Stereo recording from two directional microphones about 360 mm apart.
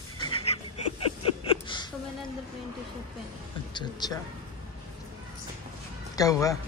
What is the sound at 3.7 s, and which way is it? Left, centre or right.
Speech, centre.